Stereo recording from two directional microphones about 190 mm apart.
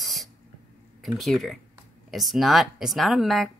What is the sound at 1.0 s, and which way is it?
Speech, centre (ahead or behind).